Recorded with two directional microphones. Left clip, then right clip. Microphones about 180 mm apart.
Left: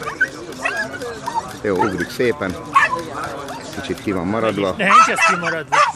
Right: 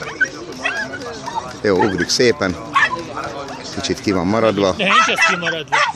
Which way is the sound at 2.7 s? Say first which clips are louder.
Left 1 dB; 15° left (ahead or behind).